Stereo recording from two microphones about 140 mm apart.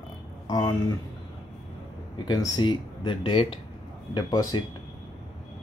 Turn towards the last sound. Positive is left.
turn(degrees=30)  # may be behind; listen again after turning